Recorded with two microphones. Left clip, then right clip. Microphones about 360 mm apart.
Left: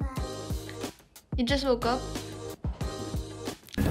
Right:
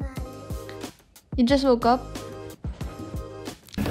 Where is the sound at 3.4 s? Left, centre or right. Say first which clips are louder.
Even; centre.